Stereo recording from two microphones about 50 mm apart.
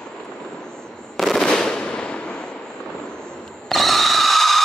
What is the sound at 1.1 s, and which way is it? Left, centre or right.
Fireworks, centre.